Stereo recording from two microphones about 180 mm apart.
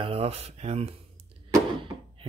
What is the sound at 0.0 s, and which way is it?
Speech, 35° right (ahead or behind).